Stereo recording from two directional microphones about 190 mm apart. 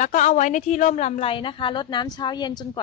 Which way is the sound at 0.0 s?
40° left (ahead or behind).